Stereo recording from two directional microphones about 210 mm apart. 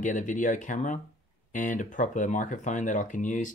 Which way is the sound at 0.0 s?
35° left (ahead or behind).